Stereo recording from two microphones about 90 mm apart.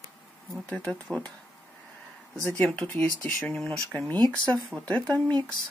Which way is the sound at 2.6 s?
15° left (ahead or behind).